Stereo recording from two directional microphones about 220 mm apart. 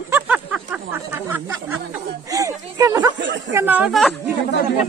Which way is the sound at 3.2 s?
55° right (ahead or behind).